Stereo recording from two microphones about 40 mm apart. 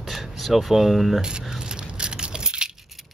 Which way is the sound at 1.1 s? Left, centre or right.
Right.